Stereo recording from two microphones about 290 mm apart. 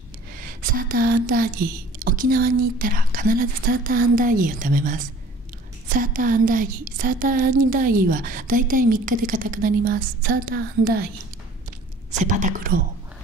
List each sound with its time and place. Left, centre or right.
0.4 s speech: right
12.1 s speech: right